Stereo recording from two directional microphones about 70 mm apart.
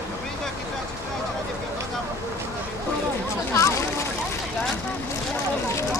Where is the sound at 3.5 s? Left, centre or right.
Left.